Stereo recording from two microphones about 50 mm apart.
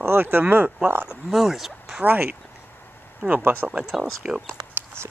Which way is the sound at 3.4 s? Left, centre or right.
Right.